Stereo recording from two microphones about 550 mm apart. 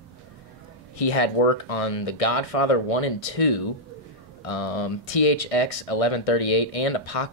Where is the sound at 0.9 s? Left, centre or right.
Left.